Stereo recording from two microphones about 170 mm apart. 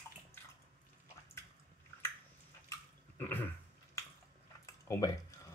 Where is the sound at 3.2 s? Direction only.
10° left (ahead or behind).